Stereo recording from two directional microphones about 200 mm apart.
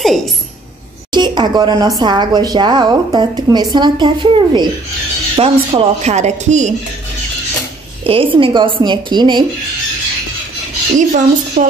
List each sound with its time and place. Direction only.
0.0 s speech: centre (ahead or behind)
1.1 s a woman's voice: 20° right (ahead or behind)
8.0 s a woman's voice: 30° right (ahead or behind)
11.0 s speech: 40° right (ahead or behind)